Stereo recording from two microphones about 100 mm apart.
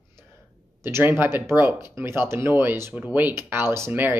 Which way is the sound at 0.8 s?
25° right (ahead or behind).